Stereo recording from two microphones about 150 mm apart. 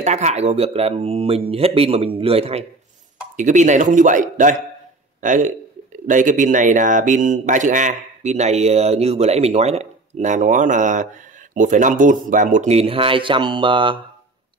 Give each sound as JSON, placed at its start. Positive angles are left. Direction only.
{"t": 0.0, "sound": "speech", "side_deg": -50}
{"t": 3.3, "sound": "speech", "side_deg": -55}